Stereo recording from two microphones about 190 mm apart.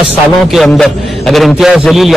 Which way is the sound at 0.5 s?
Centre (ahead or behind).